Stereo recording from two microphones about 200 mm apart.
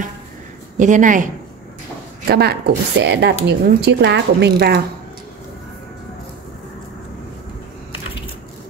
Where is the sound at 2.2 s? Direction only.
55° right (ahead or behind).